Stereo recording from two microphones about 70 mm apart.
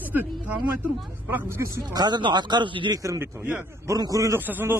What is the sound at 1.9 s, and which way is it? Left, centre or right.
Speech, right.